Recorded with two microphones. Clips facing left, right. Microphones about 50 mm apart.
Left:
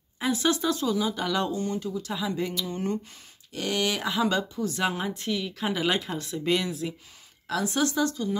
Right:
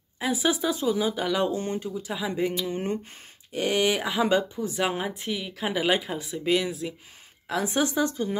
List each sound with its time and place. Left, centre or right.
0.2 s speech: centre
1.5 s speech: right
1.9 s a woman's voice: centre
7.4 s a woman's voice: centre